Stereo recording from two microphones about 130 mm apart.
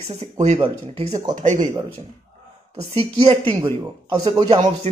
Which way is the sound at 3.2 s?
50° right (ahead or behind).